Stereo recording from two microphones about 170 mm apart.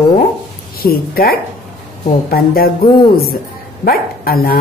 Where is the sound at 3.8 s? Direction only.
60° left (ahead or behind).